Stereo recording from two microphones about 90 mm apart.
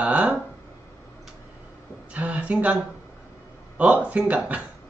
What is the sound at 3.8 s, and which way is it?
Speech, 15° right (ahead or behind).